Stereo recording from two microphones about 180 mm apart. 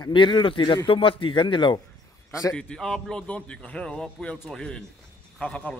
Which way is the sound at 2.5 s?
5° left (ahead or behind).